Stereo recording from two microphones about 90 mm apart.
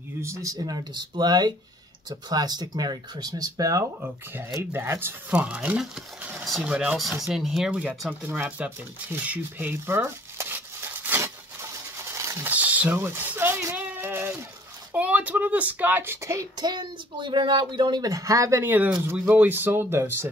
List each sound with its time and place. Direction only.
0.2 s speech: 35° right (ahead or behind)
4.0 s speech: 25° right (ahead or behind)
5.3 s speech: 15° right (ahead or behind)
8.1 s shuffling cards: 15° right (ahead or behind); by 12.4 s 30° right (ahead or behind)
12.4 s speech: 20° right (ahead or behind)
13.7 s a sound: 20° right (ahead or behind)
14.9 s speech: 15° right (ahead or behind); by 16.4 s 35° right (ahead or behind)
16.5 s speech: 55° right (ahead or behind)
18.0 s speech: 40° right (ahead or behind)
18.6 s speech: 20° right (ahead or behind)